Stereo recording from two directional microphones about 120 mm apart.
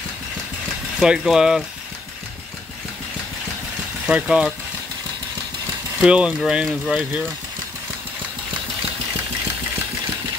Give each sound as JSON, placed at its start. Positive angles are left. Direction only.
{"t": 0.9, "sound": "speech", "side_deg": -5}
{"t": 4.0, "sound": "speech", "side_deg": -5}
{"t": 5.9, "sound": "speech", "side_deg": -10}